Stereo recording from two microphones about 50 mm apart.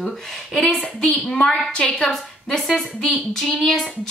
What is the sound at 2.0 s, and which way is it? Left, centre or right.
A woman's voice, centre.